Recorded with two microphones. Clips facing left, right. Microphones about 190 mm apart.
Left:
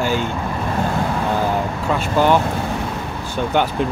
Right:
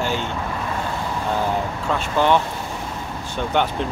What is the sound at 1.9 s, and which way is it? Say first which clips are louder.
Speech: left 2 dB; 5° left (ahead or behind).